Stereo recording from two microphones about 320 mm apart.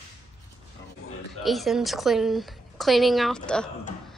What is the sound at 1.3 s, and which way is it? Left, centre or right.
A woman's voice, centre.